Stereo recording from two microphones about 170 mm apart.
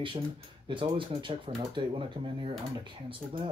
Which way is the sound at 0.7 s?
30° right (ahead or behind).